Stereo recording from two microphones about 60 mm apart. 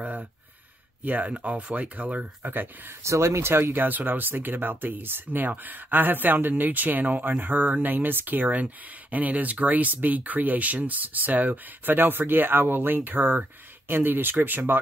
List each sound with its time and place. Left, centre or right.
1.0 s speech: right
3.0 s speech: right